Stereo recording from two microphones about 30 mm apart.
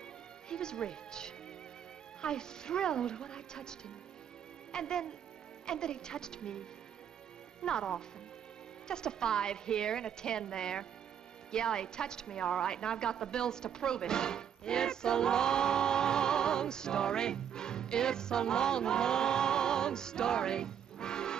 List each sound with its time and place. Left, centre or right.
0.5 s a woman's voice: left
4.7 s a woman's voice: left
7.6 s a woman's voice: left